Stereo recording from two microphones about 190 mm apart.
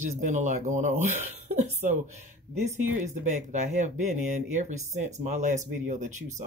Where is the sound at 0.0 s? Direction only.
40° right (ahead or behind).